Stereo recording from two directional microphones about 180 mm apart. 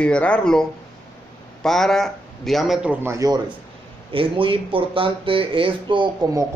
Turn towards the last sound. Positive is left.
turn(degrees=-25)  # may be behind; listen again after turning